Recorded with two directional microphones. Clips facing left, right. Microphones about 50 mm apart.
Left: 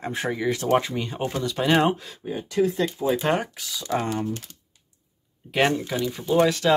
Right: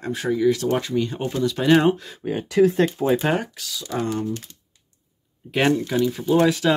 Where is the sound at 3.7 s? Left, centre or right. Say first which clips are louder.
Even; left.